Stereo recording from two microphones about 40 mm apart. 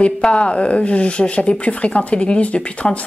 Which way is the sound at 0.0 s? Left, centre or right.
Left.